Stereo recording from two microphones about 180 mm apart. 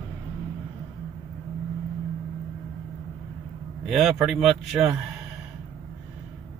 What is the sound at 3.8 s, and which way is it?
Speech, centre (ahead or behind).